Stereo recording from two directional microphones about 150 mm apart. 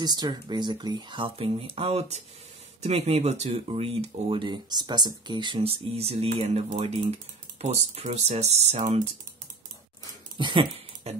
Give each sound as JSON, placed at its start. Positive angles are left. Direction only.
{"t": 0.0, "sound": "speech", "side_deg": -25}
{"t": 7.6, "sound": "speech", "side_deg": -50}
{"t": 10.3, "sound": "a sound", "side_deg": -35}